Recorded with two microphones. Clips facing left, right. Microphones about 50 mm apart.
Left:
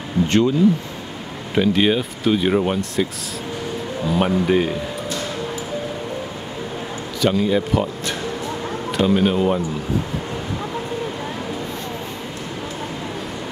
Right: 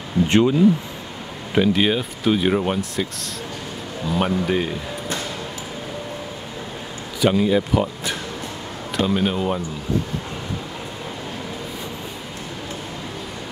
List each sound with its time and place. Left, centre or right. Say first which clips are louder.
0.3 s speech: right 1 dB; centre
1.5 s speech: left 1 dB; centre
7.2 s speech: right 1 dB; centre